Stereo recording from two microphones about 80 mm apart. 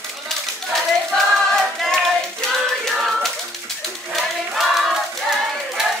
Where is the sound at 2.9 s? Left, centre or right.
Centre.